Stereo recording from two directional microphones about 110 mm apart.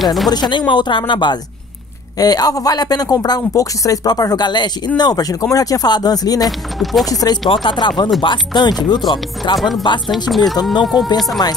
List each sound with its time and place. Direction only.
0.0 s speech: centre (ahead or behind)
0.3 s speech: 45° left (ahead or behind)
6.4 s speech: centre (ahead or behind)
7.1 s speech: 35° left (ahead or behind)
7.4 s speech: 50° left (ahead or behind)
9.6 s speech: centre (ahead or behind)